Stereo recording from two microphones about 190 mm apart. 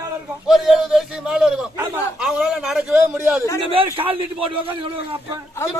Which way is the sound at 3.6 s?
25° right (ahead or behind).